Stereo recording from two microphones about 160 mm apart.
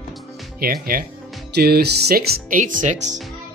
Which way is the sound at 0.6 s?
65° right (ahead or behind).